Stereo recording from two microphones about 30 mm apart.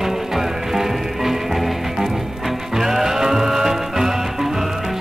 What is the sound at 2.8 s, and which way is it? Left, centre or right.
Music, centre.